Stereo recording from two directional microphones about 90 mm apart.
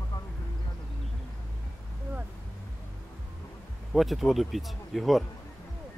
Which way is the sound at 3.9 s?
Centre (ahead or behind).